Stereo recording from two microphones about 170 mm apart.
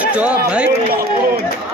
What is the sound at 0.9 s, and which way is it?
Speech, 60° right (ahead or behind).